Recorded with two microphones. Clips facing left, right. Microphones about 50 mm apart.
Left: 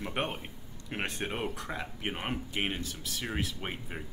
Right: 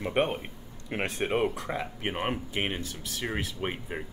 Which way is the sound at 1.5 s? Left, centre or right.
Centre.